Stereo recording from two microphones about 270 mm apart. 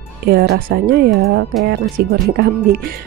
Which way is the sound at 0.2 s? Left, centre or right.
Right.